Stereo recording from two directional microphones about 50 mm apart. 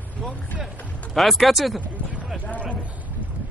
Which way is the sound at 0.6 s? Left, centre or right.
Centre.